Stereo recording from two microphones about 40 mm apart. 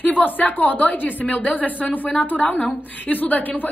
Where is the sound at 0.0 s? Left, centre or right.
Left.